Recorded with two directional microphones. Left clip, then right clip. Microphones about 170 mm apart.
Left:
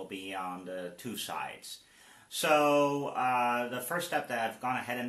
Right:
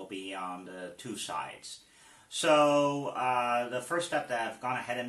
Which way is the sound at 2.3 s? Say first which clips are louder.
Right 2 dB; 40° left (ahead or behind).